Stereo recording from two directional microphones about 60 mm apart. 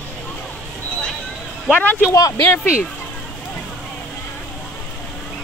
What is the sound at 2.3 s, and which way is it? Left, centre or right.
Speech, left.